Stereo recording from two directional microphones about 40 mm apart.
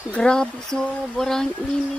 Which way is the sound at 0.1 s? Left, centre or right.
Centre.